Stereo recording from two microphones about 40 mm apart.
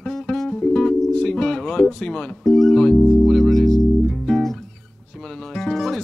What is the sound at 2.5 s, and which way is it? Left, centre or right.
Speech, centre.